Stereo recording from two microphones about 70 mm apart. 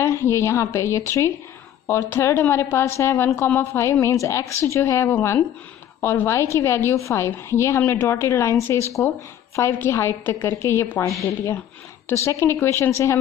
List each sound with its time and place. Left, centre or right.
0.0 s a woman's voice: left
4.0 s a woman's voice: left
6.1 s a woman's voice: left